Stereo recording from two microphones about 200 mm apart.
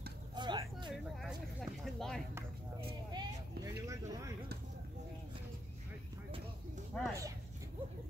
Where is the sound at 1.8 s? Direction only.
Centre (ahead or behind).